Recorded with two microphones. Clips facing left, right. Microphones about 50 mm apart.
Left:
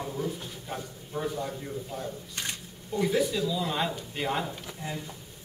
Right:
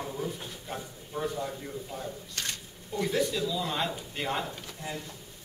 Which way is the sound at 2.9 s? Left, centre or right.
Centre.